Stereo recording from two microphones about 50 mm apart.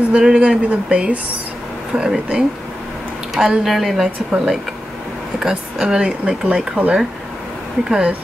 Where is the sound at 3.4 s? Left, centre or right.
Centre.